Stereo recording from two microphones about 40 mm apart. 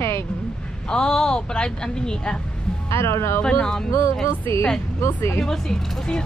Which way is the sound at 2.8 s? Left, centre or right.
Left.